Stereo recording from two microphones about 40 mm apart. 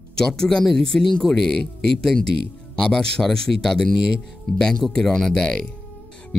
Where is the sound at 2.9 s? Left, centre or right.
Centre.